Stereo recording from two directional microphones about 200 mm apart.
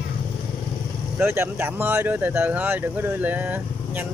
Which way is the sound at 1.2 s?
10° right (ahead or behind).